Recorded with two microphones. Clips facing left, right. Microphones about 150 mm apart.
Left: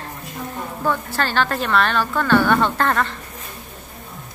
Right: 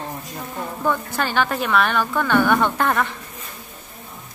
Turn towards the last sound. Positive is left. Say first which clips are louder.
# even
turn(degrees=-10)  # may be behind; listen again after turning